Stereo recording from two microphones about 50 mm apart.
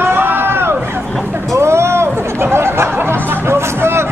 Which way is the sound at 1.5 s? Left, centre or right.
Right.